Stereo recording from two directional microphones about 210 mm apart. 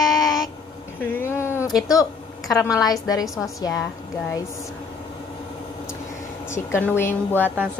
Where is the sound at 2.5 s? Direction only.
15° left (ahead or behind).